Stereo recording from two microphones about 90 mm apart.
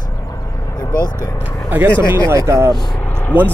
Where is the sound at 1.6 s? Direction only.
20° right (ahead or behind).